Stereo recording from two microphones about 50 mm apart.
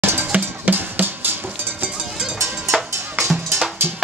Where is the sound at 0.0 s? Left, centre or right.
Right.